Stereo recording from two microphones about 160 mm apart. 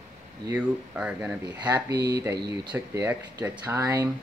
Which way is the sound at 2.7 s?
15° right (ahead or behind).